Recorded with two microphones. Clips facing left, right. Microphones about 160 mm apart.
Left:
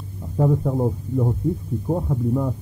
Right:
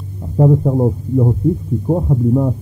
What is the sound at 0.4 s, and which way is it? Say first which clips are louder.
Speech: right 7 dB; 25° right (ahead or behind).